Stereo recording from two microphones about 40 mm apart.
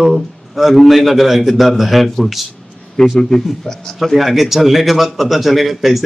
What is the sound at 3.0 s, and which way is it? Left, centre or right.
A man's voice, centre.